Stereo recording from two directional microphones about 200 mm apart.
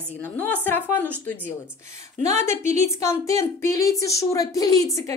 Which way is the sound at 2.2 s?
35° right (ahead or behind).